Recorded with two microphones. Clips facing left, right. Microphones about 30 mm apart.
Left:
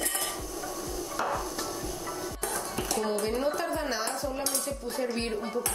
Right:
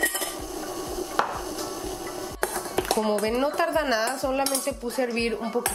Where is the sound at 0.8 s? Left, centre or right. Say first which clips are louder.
Right 6 dB; right.